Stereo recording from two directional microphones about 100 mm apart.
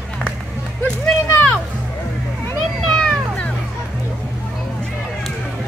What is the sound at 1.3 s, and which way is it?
Music, 20° left (ahead or behind).